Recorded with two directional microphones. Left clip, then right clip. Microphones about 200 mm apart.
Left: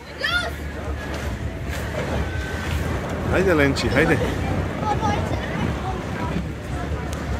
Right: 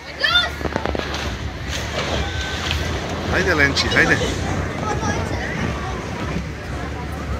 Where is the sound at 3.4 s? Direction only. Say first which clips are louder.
Right 2 dB; 35° left (ahead or behind).